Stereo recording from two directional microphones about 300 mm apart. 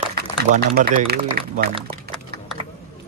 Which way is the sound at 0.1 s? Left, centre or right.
Right.